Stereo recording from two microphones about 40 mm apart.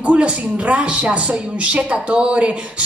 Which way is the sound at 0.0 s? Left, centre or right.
Right.